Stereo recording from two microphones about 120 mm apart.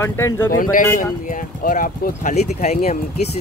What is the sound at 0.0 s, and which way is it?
Speech, 25° left (ahead or behind).